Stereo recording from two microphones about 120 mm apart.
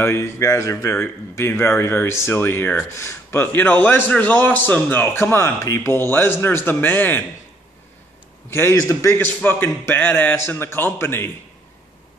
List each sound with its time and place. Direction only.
0.0 s speech: 20° left (ahead or behind)
8.5 s a man's voice: 20° left (ahead or behind)